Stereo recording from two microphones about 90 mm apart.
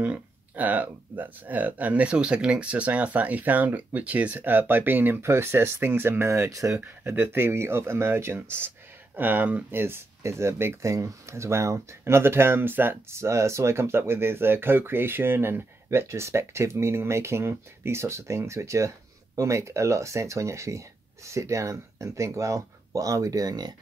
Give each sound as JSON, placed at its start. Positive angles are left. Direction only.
{"t": 0.0, "sound": "speech", "side_deg": -20}
{"t": 6.8, "sound": "speech", "side_deg": -25}